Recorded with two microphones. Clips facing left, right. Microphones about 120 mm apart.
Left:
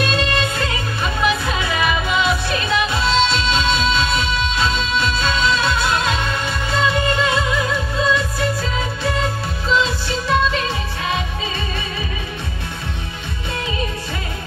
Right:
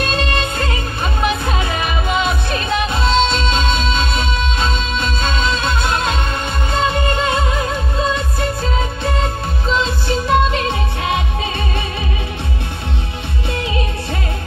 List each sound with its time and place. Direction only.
0.0 s music: 45° right (ahead or behind); by 11.2 s 60° right (ahead or behind)